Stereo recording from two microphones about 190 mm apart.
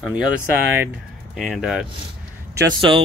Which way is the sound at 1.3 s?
Centre (ahead or behind).